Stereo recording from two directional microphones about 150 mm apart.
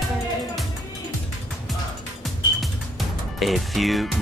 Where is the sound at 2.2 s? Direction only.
Centre (ahead or behind).